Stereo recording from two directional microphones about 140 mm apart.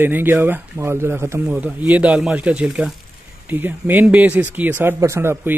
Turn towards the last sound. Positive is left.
turn(degrees=-15)  # may be behind; listen again after turning